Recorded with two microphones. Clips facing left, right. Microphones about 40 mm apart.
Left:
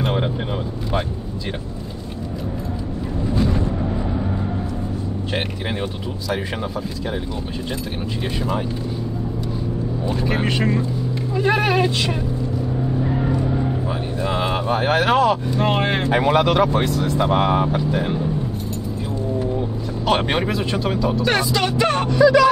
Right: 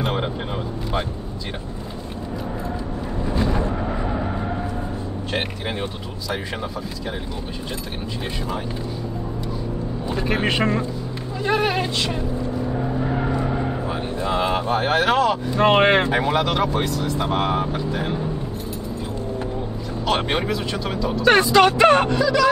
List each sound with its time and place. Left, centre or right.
0.0 s vehicle: centre
3.3 s a sound: centre
3.6 s artillery fire: right
10.2 s speech: right
11.3 s speech: centre
12.7 s vehicle: right
13.8 s vehicle: centre
15.6 s speech: right
16.1 s speech: centre
20.2 s speech: centre
20.4 s speech: centre
20.9 s speech: centre
21.2 s speech: right